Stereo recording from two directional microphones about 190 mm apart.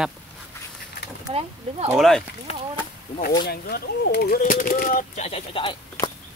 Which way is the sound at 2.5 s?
30° left (ahead or behind).